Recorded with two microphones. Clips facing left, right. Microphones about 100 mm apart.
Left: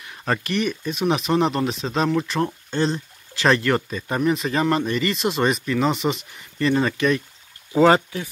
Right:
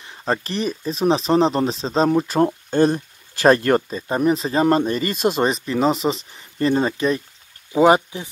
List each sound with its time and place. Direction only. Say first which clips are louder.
0.0 s speech: right 2 dB; 25° right (ahead or behind); by 5.4 s 45° right (ahead or behind)
5.4 s speech: left 1 dB; 35° right (ahead or behind)
7.7 s speech: right 1 dB; 15° right (ahead or behind)